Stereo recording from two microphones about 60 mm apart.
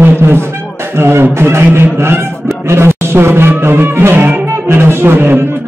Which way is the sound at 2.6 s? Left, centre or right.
Right.